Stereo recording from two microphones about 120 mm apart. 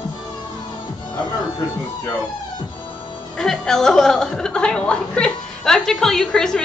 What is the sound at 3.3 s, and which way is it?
A woman's voice, 5° left (ahead or behind).